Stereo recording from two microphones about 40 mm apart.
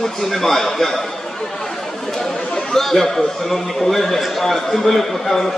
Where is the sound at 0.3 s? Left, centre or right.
Centre.